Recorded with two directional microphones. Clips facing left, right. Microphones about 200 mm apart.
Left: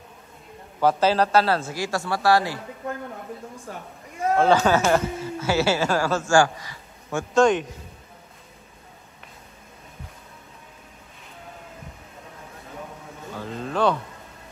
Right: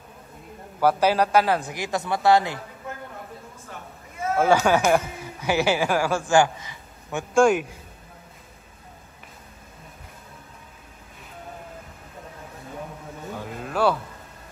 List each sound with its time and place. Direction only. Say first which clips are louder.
0.7 s speech: even; 10° right (ahead or behind)
4.4 s speech: even; 15° right (ahead or behind)
13.3 s a sound: left 2 dB; 10° right (ahead or behind)